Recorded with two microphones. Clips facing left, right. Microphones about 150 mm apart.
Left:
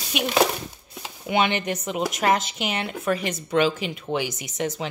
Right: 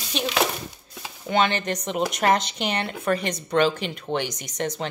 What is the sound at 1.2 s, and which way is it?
Speech, 15° left (ahead or behind).